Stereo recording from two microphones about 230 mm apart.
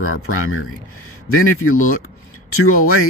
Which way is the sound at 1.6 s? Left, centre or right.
Left.